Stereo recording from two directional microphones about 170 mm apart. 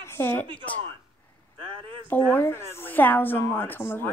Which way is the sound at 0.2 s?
10° left (ahead or behind).